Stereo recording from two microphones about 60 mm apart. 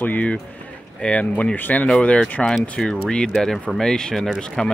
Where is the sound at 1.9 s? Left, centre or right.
Centre.